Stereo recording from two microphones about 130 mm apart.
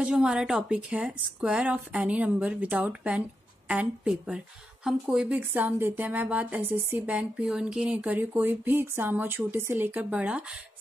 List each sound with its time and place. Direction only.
0.0 s a woman's voice: 5° right (ahead or behind)